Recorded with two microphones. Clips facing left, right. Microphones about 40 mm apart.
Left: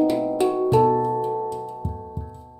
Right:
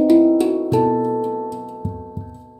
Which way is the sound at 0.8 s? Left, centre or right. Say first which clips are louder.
Right 2 dB; centre.